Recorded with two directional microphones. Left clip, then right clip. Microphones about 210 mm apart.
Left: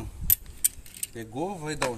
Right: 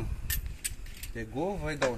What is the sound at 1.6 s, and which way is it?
Speech, 60° left (ahead or behind).